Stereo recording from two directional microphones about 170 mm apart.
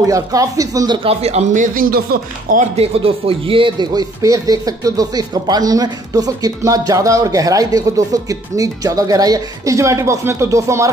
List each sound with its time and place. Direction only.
0.0 s speech: 20° right (ahead or behind)
1.0 s speech: 40° right (ahead or behind); by 2.6 s 60° right (ahead or behind)
2.8 s speech: 35° right (ahead or behind); by 10.9 s 15° right (ahead or behind)